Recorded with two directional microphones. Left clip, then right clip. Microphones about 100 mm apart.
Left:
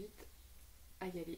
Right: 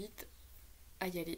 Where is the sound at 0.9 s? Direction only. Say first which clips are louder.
Right 5 dB; 20° right (ahead or behind).